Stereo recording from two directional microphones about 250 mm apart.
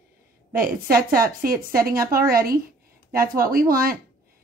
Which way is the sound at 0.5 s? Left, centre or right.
Right.